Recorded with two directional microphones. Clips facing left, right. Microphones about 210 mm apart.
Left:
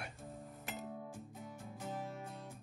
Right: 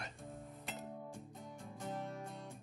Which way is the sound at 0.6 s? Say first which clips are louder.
Left 3 dB; centre (ahead or behind).